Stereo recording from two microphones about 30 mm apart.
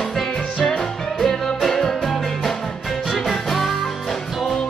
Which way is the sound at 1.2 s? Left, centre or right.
Centre.